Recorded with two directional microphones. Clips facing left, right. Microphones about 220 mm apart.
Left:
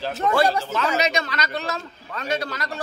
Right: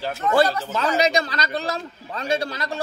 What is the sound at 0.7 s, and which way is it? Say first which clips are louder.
A man's voice: right 2 dB; 30° right (ahead or behind).